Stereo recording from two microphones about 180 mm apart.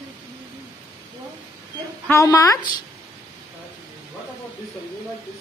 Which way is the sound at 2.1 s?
15° left (ahead or behind).